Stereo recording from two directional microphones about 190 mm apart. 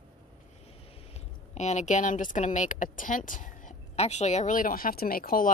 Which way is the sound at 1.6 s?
35° left (ahead or behind).